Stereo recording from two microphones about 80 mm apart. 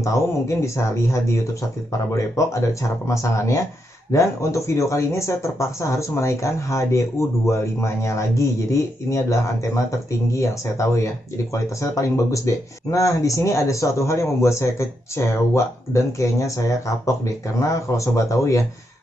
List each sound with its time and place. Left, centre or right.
0.0 s speech: left